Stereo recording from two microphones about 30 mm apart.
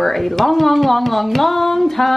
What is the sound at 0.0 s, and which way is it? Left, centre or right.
A woman's voice, centre.